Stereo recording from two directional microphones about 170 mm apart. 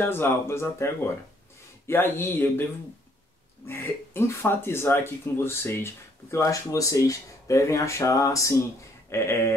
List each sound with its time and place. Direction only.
0.0 s speech: 15° left (ahead or behind)
3.6 s speech: 15° left (ahead or behind)